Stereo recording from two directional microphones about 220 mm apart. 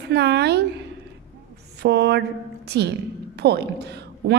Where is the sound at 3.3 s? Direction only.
50° right (ahead or behind).